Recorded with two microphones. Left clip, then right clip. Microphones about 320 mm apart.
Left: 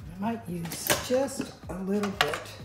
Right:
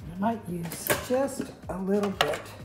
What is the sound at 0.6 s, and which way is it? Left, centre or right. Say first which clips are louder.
Speech: even; centre.